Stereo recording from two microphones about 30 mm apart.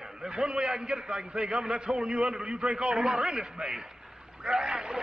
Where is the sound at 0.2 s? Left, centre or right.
Right.